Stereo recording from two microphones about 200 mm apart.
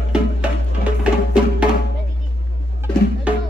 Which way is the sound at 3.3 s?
5° right (ahead or behind).